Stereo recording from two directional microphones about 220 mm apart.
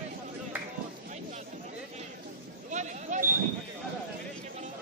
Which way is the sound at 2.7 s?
35° right (ahead or behind).